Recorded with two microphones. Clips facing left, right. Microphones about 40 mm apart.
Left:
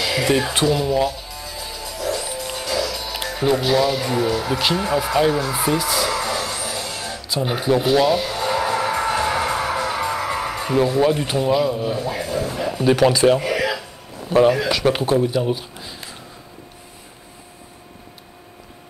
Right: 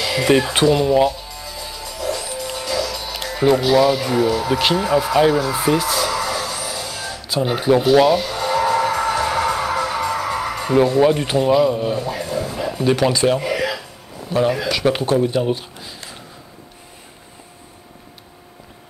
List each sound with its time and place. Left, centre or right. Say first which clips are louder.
0.0 s a sound: right 1 dB; centre
0.5 s speech: right 4 dB; centre
1.0 s music: right 4 dB; centre
3.1 s speech: right 5 dB; centre
5.7 s music: right 2 dB; centre
7.5 s speech: right 3 dB; centre
7.8 s music: right 4 dB; centre
11.0 s speech: right 3 dB; centre
12.1 s speech: even; centre
15.3 s speech: right 1 dB; centre
15.8 s a sound: even; centre